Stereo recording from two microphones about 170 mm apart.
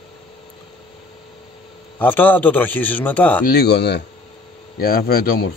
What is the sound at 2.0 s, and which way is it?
A man's voice, 10° left (ahead or behind).